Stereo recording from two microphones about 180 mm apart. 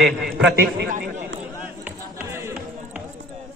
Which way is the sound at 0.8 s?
55° right (ahead or behind).